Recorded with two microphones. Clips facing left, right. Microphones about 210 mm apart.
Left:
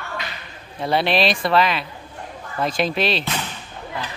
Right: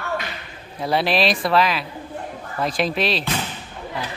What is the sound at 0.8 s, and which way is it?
Speech, centre (ahead or behind).